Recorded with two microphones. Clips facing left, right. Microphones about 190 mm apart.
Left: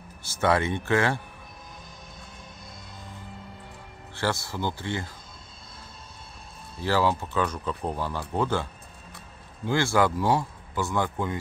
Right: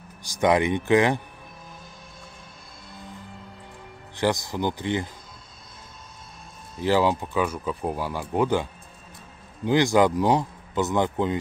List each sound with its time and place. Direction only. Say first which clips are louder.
0.2 s speech: right 3 dB; 15° right (ahead or behind)
4.1 s speech: right 5 dB; 15° right (ahead or behind)
6.8 s speech: right 3 dB; 15° right (ahead or behind)
9.7 s speech: right 4 dB; 20° right (ahead or behind)